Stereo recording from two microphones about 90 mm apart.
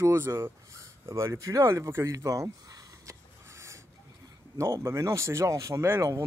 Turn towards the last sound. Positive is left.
turn(degrees=-35)  # may be behind; listen again after turning